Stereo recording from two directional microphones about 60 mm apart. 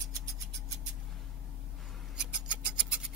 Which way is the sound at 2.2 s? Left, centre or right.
Centre.